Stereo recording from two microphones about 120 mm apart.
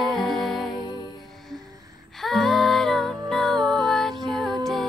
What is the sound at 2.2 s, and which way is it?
Music, centre (ahead or behind).